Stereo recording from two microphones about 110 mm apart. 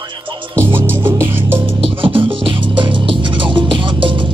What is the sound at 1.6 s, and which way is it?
Music, 50° right (ahead or behind).